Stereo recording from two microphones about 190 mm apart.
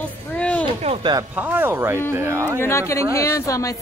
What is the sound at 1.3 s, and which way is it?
Speech, 10° right (ahead or behind).